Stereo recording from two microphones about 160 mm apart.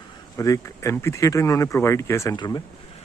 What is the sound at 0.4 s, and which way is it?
Speech, 20° left (ahead or behind).